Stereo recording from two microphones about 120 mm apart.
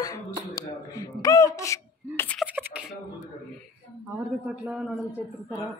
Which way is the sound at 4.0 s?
10° right (ahead or behind).